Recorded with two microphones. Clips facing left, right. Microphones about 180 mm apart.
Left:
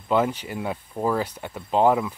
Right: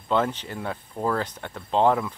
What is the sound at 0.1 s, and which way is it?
Speech, 10° left (ahead or behind).